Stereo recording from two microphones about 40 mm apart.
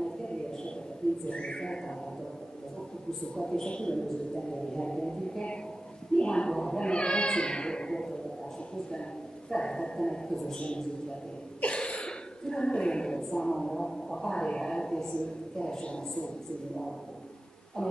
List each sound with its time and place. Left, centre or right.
1.3 s speech: left
3.3 s speech: centre
6.1 s speech: left
9.5 s a woman's voice: centre
17.8 s speech: left